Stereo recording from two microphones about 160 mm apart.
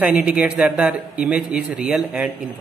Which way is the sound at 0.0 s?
10° right (ahead or behind).